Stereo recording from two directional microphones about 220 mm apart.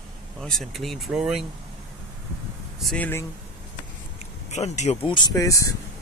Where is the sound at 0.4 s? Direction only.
Centre (ahead or behind).